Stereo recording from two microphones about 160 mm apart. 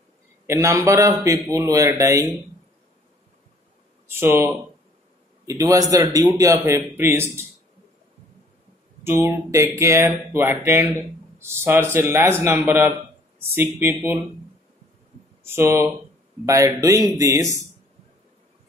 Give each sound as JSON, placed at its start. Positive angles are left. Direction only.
{"t": 0.5, "sound": "a man's voice", "side_deg": -20}
{"t": 4.1, "sound": "speech", "side_deg": -15}
{"t": 5.5, "sound": "a man's voice", "side_deg": -20}
{"t": 9.0, "sound": "speech", "side_deg": -15}
{"t": 15.4, "sound": "a man's voice", "side_deg": -15}